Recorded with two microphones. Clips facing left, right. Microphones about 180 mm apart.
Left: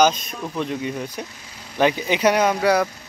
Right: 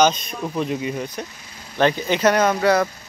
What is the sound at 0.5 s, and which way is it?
Speech, 5° right (ahead or behind).